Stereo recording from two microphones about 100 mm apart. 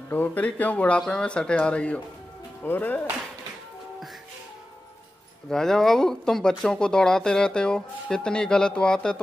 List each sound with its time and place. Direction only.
0.1 s speech: 20° left (ahead or behind)
5.5 s speech: 5° left (ahead or behind)